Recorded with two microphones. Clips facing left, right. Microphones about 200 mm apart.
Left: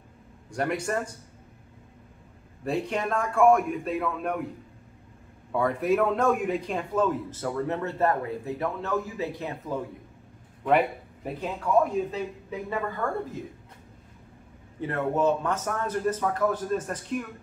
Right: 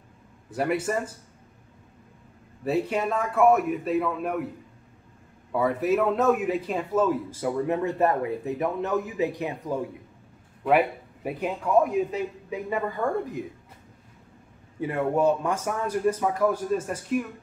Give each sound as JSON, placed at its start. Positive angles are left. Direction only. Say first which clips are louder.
{"t": 0.5, "sound": "a man's voice", "louder": "right 2 dB", "side_deg": -5}
{"t": 2.6, "sound": "a man's voice", "louder": "right 3 dB", "side_deg": -5}
{"t": 5.5, "sound": "a man's voice", "louder": "right 1 dB", "side_deg": -5}
{"t": 11.2, "sound": "a man's voice", "louder": "right 2 dB", "side_deg": -10}
{"t": 14.8, "sound": "a man's voice", "louder": "right 2 dB", "side_deg": -10}